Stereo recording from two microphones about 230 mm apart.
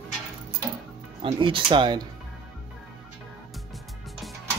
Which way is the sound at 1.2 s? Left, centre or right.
Right.